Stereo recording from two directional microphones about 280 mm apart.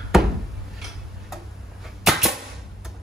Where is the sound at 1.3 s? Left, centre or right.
Centre.